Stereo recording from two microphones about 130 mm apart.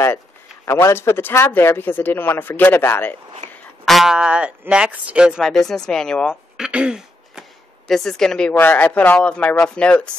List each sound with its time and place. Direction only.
0.7 s a man's voice: 20° left (ahead or behind)
3.8 s speech: centre (ahead or behind)
5.5 s speech: 5° left (ahead or behind)
6.5 s throat clearing: 5° right (ahead or behind)
7.9 s a man's voice: centre (ahead or behind)